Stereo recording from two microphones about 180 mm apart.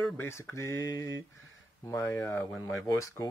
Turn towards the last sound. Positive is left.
turn(degrees=15)  # may be behind; listen again after turning